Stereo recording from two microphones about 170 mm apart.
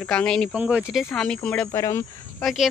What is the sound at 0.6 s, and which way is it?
Speech, 5° right (ahead or behind).